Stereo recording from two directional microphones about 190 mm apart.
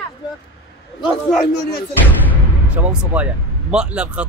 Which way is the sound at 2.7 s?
5° right (ahead or behind).